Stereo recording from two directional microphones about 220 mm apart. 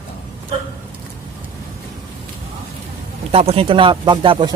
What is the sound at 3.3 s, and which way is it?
Speech, 25° right (ahead or behind).